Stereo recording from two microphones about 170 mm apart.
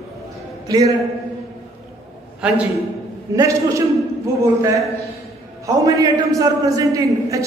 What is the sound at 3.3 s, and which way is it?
A man's voice, 20° right (ahead or behind).